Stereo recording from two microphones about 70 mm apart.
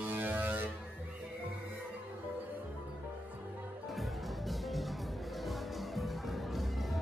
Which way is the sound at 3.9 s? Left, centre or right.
Centre.